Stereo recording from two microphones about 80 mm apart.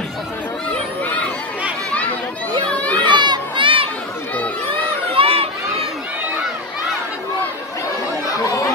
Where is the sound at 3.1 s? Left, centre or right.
Right.